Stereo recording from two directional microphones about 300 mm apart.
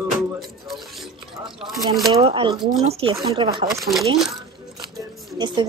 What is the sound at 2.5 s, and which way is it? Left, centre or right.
Speech, centre.